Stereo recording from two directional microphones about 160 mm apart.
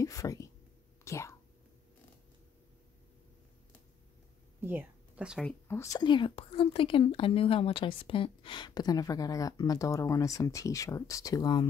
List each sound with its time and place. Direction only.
0.0 s speech: 20° left (ahead or behind)
4.6 s speech: 10° right (ahead or behind)
5.7 s speech: 20° left (ahead or behind)